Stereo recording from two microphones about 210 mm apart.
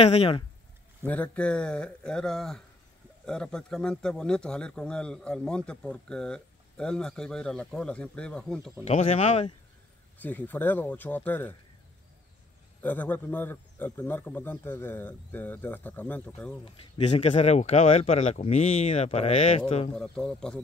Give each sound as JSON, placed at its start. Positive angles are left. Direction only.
{"t": 0.0, "sound": "speech", "side_deg": 30}
{"t": 1.0, "sound": "speech", "side_deg": 5}
{"t": 8.8, "sound": "speech", "side_deg": 30}
{"t": 10.2, "sound": "a man's voice", "side_deg": 10}
{"t": 12.8, "sound": "a man's voice", "side_deg": 10}
{"t": 16.6, "sound": "speech", "side_deg": 30}
{"t": 20.0, "sound": "speech", "side_deg": 5}